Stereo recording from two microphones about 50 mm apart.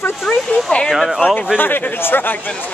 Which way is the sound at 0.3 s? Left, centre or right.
Centre.